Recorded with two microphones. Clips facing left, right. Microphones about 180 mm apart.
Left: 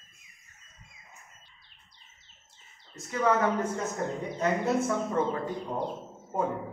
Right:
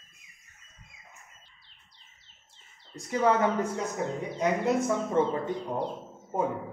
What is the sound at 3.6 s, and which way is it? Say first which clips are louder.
A man's voice: right 1 dB; 10° right (ahead or behind).